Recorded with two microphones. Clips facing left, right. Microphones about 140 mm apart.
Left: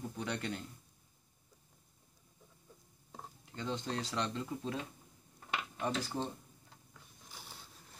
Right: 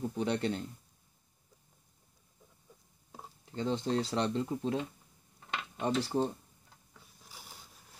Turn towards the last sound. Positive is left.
turn(degrees=-10)  # may be behind; listen again after turning